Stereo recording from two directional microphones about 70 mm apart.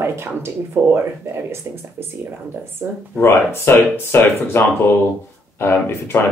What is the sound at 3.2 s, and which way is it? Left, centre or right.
Speech, left.